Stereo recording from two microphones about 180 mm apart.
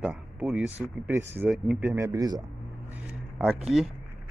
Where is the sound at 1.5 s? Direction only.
Centre (ahead or behind).